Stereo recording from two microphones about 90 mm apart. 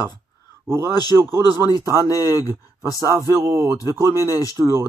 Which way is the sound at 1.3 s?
50° left (ahead or behind).